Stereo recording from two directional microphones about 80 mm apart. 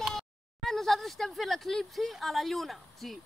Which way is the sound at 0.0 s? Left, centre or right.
Centre.